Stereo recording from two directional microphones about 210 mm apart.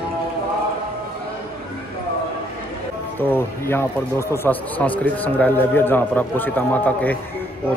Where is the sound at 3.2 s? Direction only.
10° left (ahead or behind).